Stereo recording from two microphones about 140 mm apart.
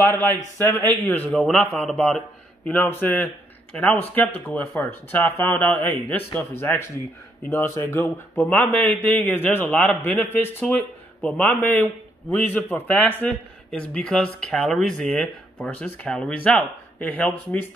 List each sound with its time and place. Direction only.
0.1 s a man's voice: 15° left (ahead or behind)